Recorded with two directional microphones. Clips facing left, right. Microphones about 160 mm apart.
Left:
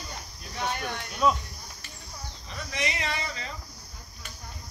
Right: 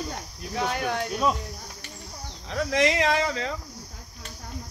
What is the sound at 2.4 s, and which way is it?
Speech, 90° right.